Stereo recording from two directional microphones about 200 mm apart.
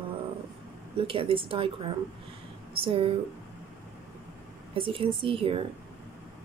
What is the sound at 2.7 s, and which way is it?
Speech, 25° right (ahead or behind).